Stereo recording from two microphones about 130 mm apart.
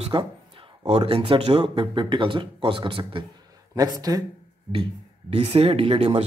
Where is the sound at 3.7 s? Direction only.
30° right (ahead or behind).